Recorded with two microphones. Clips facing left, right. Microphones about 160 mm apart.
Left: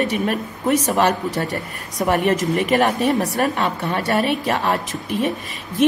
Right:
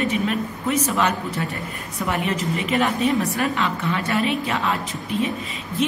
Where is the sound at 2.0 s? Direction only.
50° left (ahead or behind).